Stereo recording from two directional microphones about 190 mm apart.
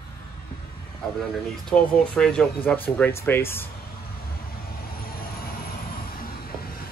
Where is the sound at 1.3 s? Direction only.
5° left (ahead or behind).